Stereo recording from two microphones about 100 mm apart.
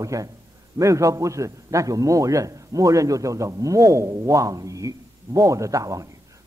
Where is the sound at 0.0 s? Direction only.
35° right (ahead or behind).